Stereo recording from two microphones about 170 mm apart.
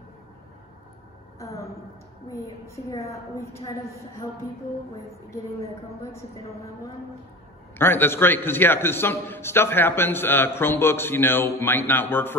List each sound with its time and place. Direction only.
1.4 s a sound: 20° left (ahead or behind)
2.3 s a man's voice: 15° left (ahead or behind)
7.7 s a man's voice: 15° left (ahead or behind)